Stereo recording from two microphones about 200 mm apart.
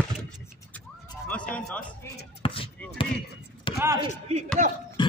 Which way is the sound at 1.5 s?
5° left (ahead or behind).